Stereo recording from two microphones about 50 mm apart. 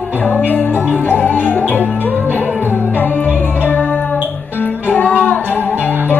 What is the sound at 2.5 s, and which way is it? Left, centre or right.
Music, right.